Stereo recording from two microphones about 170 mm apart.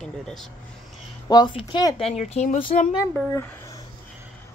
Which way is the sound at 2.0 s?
40° left (ahead or behind).